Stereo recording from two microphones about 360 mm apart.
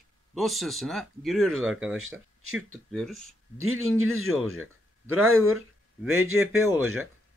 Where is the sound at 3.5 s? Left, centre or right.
Right.